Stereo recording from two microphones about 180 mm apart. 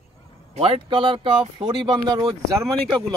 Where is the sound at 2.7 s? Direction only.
5° left (ahead or behind).